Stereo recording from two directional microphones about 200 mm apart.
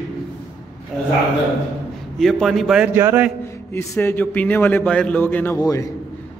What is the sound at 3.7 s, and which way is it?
A man's voice, 10° left (ahead or behind).